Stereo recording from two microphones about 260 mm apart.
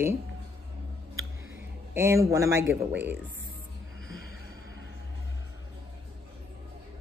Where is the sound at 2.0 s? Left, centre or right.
Centre.